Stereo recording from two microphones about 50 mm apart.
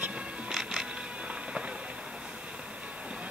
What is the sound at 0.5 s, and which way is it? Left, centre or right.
Music, centre.